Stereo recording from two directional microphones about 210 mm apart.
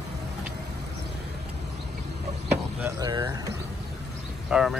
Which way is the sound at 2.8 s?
20° right (ahead or behind).